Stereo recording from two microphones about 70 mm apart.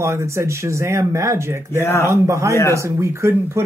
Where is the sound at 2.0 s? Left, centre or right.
Right.